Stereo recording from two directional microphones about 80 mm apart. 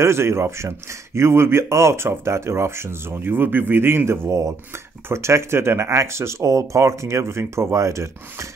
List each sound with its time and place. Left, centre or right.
0.0 s speech: right